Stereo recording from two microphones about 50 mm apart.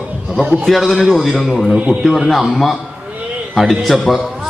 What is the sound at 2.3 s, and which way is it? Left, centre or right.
A man's voice, centre.